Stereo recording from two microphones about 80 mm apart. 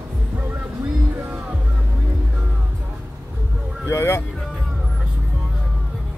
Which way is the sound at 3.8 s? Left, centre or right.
Left.